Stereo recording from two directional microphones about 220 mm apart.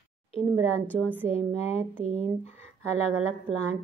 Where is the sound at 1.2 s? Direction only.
30° left (ahead or behind).